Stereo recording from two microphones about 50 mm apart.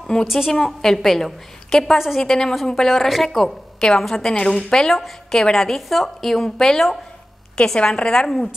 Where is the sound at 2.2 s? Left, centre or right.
Centre.